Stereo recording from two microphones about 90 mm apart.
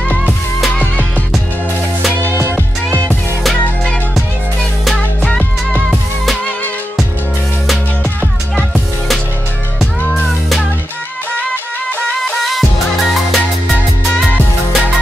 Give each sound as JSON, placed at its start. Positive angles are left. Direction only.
{"t": 2.2, "sound": "music", "side_deg": -25}
{"t": 3.4, "sound": "music", "side_deg": 0}
{"t": 5.8, "sound": "music", "side_deg": -5}
{"t": 8.5, "sound": "music", "side_deg": 0}
{"t": 10.0, "sound": "music", "side_deg": 15}
{"t": 12.3, "sound": "music", "side_deg": 0}